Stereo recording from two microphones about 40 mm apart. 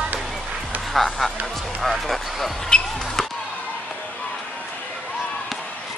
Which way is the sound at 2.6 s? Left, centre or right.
Centre.